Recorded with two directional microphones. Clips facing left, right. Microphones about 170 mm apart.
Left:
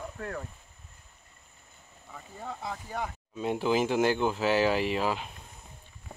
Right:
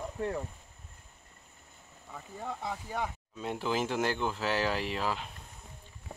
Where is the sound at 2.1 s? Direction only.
10° right (ahead or behind); by 5.2 s 10° left (ahead or behind).